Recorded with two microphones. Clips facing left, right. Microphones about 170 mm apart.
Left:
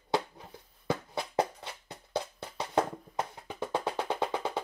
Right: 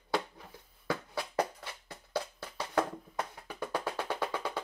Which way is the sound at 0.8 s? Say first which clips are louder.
Left 2 dB; 20° left (ahead or behind).